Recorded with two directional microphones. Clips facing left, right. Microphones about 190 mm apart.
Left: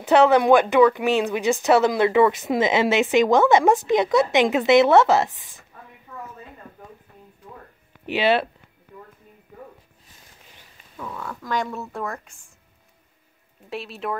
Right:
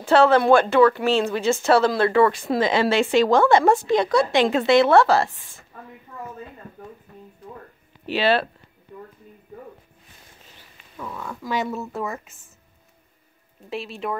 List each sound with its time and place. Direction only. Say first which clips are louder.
0.0 s a woman's voice: even; 20° left (ahead or behind)
8.1 s a woman's voice: even; 20° left (ahead or behind)
11.0 s speech: even; 5° right (ahead or behind)
13.7 s speech: right 1 dB; centre (ahead or behind)